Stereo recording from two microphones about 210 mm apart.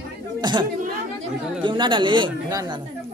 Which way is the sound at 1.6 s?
25° right (ahead or behind).